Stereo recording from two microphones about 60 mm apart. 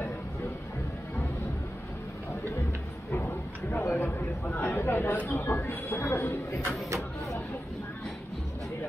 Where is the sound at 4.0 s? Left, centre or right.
Left.